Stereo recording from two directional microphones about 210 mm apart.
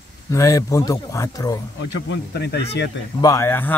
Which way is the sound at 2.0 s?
50° left (ahead or behind).